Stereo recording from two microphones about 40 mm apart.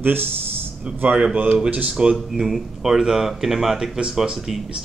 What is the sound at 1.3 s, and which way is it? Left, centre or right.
Speech, right.